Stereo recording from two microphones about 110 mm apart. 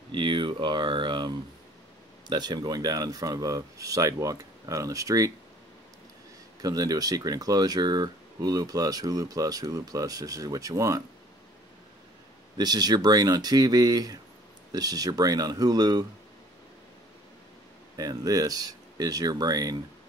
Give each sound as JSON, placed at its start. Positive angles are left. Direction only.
{"t": 0.1, "sound": "a sound", "side_deg": -50}
{"t": 2.2, "sound": "speech", "side_deg": -40}
{"t": 6.6, "sound": "speech", "side_deg": -35}
{"t": 12.5, "sound": "speech", "side_deg": -40}
{"t": 17.9, "sound": "speech", "side_deg": -35}